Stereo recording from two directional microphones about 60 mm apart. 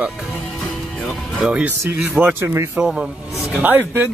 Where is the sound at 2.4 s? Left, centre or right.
Right.